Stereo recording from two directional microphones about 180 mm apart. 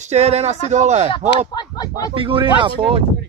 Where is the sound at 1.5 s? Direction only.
20° left (ahead or behind).